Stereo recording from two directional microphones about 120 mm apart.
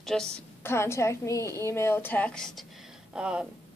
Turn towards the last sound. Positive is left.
turn(degrees=-10)  # may be behind; listen again after turning